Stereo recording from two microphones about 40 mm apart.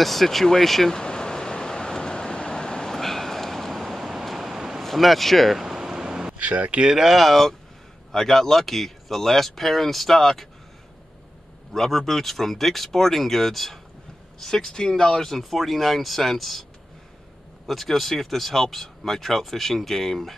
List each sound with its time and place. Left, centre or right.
0.0 s speech: centre
1.0 s vehicle: centre
4.8 s speech: centre
5.6 s a sound: centre
6.4 s speech: right
6.8 s speech: centre
7.2 s speech: centre
11.7 s speech: centre
14.4 s speech: centre
17.6 s speech: centre